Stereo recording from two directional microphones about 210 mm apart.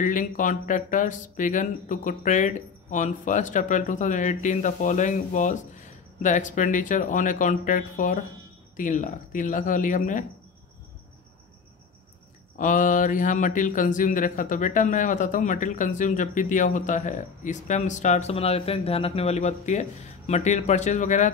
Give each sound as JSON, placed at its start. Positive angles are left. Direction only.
{"t": 0.0, "sound": "speech", "side_deg": 40}
{"t": 12.5, "sound": "speech", "side_deg": 35}